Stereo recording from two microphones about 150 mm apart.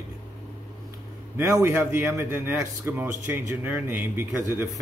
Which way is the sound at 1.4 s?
15° right (ahead or behind).